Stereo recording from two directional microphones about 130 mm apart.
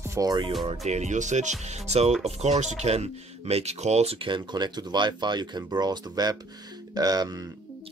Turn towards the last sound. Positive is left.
turn(degrees=-30)  # may be behind; listen again after turning